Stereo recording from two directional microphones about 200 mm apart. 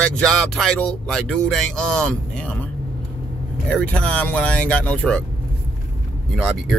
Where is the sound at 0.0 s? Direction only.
5° left (ahead or behind).